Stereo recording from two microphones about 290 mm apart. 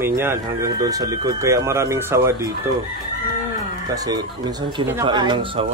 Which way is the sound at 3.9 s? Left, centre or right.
Centre.